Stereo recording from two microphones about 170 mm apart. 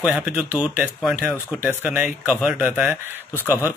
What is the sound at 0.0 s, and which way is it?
Speech, 5° right (ahead or behind).